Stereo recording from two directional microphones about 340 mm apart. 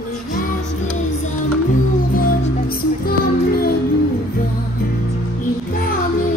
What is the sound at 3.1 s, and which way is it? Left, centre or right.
Music, left.